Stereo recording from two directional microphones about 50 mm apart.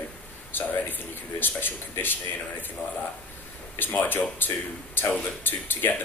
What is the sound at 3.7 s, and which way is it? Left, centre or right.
A man's voice, left.